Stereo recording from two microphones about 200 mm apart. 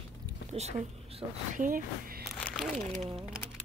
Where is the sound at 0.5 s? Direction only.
30° right (ahead or behind).